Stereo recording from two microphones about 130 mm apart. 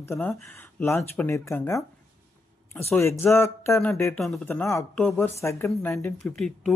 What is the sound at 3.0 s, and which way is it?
Speech, 20° left (ahead or behind).